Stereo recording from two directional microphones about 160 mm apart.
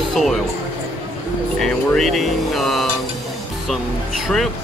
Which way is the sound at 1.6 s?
Centre (ahead or behind).